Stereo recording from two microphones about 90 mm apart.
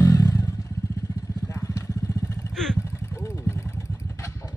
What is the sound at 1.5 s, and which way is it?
Vehicle, 35° left (ahead or behind).